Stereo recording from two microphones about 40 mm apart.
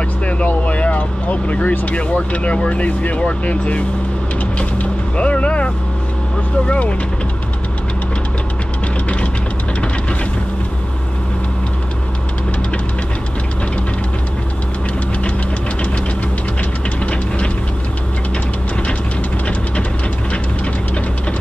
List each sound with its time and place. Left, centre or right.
0.7 s vehicle: left
2.0 s speech: left
5.1 s vehicle: left
6.6 s speech: left